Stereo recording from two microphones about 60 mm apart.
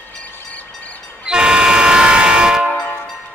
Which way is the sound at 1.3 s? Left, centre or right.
Centre.